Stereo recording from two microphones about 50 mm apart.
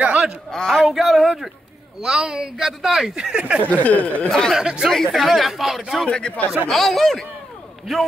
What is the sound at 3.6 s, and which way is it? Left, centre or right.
Speech, left.